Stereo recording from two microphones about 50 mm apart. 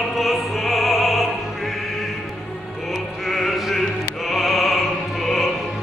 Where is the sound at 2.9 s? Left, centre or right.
Centre.